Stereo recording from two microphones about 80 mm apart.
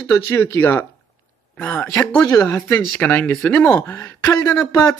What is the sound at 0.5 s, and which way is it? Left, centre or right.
Speech, left.